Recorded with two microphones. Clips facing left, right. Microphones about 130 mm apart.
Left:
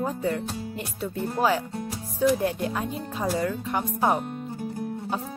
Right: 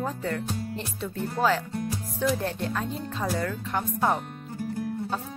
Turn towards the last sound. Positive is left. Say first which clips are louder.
# left 2 dB
turn(degrees=15)  # may be behind; listen again after turning